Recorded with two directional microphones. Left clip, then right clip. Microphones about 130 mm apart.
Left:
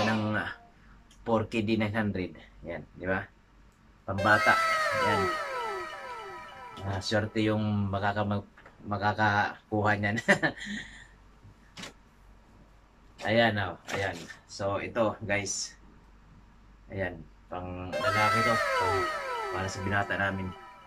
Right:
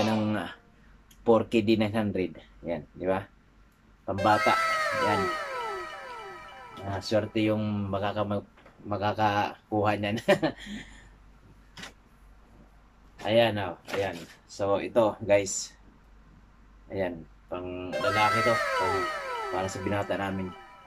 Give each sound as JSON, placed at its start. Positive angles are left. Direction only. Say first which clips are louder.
{"t": 0.3, "sound": "music", "louder": "left 1 dB", "side_deg": -20}
{"t": 1.2, "sound": "speech", "louder": "right 6 dB", "side_deg": -25}
{"t": 4.1, "sound": "speech", "louder": "even", "side_deg": 0}
{"t": 13.2, "sound": "speech", "louder": "right 2 dB", "side_deg": -15}
{"t": 14.6, "sound": "speech", "louder": "right 4 dB", "side_deg": -25}
{"t": 16.9, "sound": "speech", "louder": "right 3 dB", "side_deg": -25}
{"t": 17.8, "sound": "speech", "louder": "right 1 dB", "side_deg": 0}
{"t": 20.0, "sound": "speech", "louder": "left 3 dB", "side_deg": -30}
{"t": 20.3, "sound": "music", "louder": "right 2 dB", "side_deg": 0}